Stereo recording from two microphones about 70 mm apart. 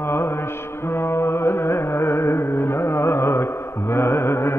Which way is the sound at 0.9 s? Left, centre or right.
Left.